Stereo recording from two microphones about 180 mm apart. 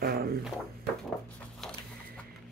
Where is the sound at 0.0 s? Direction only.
55° right (ahead or behind).